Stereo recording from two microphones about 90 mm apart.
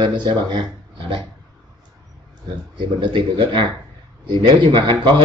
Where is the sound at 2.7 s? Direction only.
65° right (ahead or behind).